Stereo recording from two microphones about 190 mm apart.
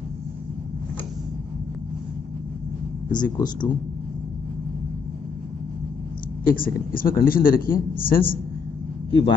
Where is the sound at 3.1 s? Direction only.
20° left (ahead or behind).